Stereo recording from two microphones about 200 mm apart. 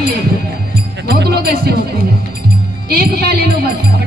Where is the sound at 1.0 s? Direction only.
55° right (ahead or behind).